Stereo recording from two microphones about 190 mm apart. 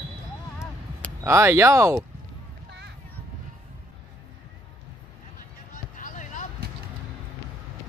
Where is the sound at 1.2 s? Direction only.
15° right (ahead or behind).